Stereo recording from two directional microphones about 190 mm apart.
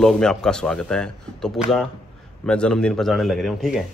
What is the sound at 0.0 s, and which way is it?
A man's voice, 5° left (ahead or behind).